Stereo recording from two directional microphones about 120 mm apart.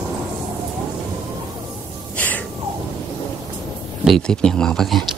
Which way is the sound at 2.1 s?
15° left (ahead or behind).